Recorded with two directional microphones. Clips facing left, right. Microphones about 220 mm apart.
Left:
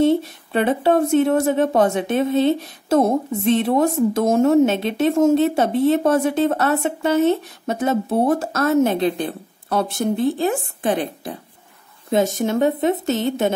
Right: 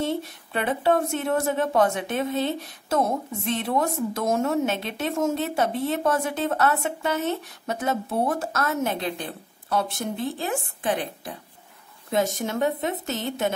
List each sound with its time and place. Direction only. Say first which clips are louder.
0.0 s a woman's voice: left 10 dB; 30° left (ahead or behind)
12.1 s a woman's voice: left 6 dB; 25° left (ahead or behind)